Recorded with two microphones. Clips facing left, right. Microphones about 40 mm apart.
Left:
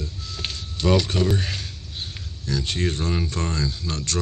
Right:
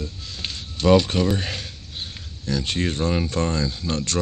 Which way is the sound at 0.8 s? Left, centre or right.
Right.